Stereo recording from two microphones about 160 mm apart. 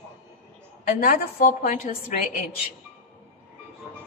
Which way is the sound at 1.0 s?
55° left (ahead or behind).